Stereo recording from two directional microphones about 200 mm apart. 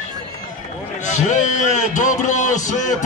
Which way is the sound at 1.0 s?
35° left (ahead or behind).